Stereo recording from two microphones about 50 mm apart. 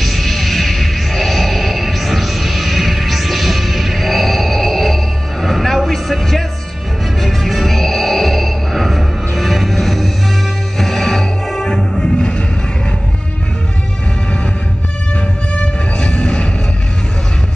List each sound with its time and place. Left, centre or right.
0.0 s music: centre
15.5 s music: centre